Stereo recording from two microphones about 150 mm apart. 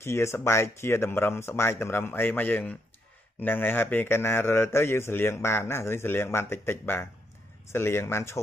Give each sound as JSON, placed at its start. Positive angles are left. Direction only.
{"t": 0.0, "sound": "speech", "side_deg": 15}